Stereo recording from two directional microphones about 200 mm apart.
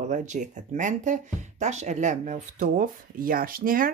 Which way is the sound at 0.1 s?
40° right (ahead or behind).